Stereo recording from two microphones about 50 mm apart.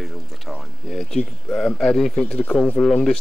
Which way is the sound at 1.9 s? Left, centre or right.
Centre.